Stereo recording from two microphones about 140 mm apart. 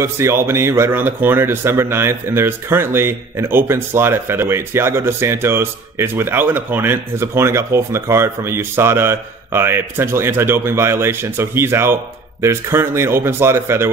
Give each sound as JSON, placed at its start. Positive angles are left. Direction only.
{"t": 0.0, "sound": "speech", "side_deg": -20}